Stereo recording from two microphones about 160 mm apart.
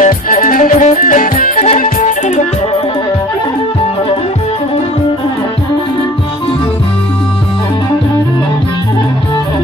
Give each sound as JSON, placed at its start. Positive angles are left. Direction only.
{"t": 0.0, "sound": "music", "side_deg": 55}